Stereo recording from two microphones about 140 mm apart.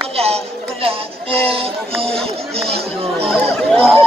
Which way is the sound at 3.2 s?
5° left (ahead or behind).